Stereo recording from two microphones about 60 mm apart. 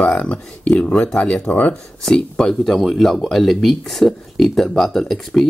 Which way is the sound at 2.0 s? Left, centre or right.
Centre.